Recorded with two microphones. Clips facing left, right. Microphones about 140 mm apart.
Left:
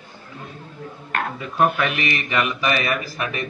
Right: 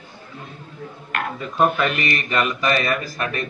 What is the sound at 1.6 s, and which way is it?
Speech, 10° left (ahead or behind).